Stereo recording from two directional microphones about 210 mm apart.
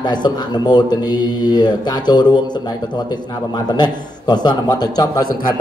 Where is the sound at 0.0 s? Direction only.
20° left (ahead or behind).